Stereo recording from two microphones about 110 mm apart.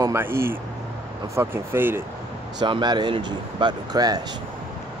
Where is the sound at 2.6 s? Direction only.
40° right (ahead or behind).